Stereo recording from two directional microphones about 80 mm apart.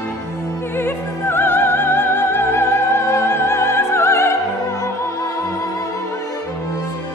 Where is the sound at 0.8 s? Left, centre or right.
Left.